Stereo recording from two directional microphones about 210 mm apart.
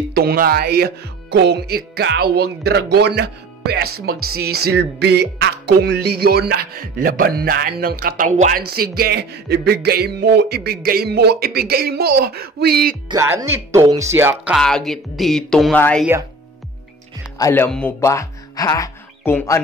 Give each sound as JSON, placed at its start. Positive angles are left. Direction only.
{"t": 0.1, "sound": "speech", "side_deg": -45}
{"t": 13.1, "sound": "speech", "side_deg": -15}
{"t": 17.4, "sound": "speech", "side_deg": 10}